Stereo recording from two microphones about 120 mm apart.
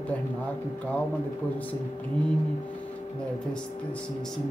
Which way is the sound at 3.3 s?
10° left (ahead or behind).